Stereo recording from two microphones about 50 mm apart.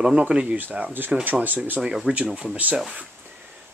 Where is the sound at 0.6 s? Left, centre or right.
Right.